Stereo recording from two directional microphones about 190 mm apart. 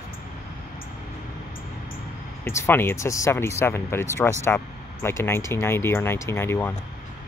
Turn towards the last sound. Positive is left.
turn(degrees=10)  # may be behind; listen again after turning